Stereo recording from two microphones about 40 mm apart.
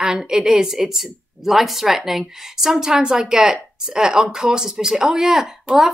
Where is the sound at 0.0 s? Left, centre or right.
Centre.